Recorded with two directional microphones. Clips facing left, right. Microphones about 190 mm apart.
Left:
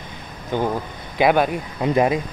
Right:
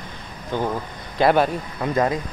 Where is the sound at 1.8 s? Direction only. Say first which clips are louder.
Left 3 dB; 20° left (ahead or behind).